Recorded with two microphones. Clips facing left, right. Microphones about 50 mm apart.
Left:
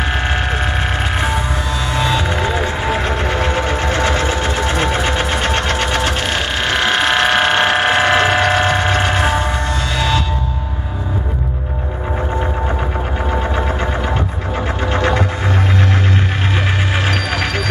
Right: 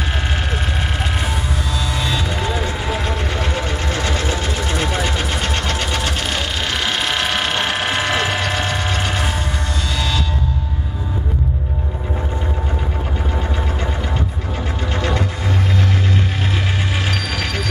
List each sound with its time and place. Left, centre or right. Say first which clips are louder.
2.0 s music: left 7 dB; left
14.9 s music: left 5 dB; left
17.1 s music: left 4 dB; centre